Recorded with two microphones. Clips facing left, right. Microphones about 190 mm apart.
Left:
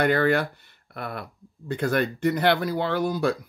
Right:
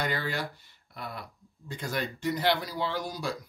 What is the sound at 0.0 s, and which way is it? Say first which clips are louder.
Speech: left 11 dB; 60° left (ahead or behind).